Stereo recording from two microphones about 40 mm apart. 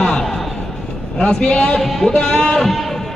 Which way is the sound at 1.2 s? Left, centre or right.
Left.